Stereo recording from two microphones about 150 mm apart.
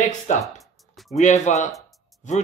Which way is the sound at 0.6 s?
Centre (ahead or behind).